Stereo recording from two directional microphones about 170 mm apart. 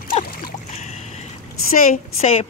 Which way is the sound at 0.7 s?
40° left (ahead or behind).